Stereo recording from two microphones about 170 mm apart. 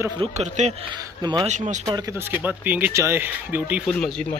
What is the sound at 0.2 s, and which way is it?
A man's voice, 40° right (ahead or behind).